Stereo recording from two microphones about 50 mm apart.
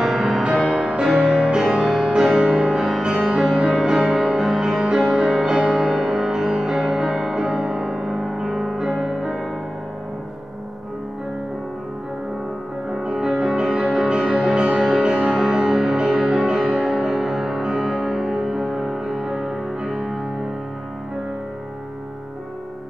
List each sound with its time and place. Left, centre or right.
0.0 s music: centre
12.9 s music: centre
15.0 s music: centre